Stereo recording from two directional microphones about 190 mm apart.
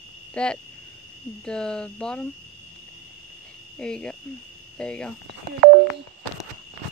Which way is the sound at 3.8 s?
5° left (ahead or behind).